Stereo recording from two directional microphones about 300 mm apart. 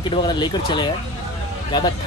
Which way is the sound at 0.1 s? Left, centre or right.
Centre.